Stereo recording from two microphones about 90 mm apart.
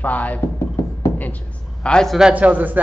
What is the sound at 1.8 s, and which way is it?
Speech, 10° left (ahead or behind).